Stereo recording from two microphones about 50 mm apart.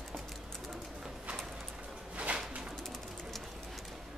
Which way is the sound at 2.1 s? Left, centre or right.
Right.